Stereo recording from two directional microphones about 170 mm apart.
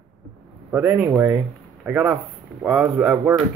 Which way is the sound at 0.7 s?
10° right (ahead or behind).